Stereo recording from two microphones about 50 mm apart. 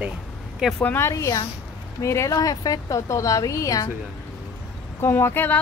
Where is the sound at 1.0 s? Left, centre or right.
Left.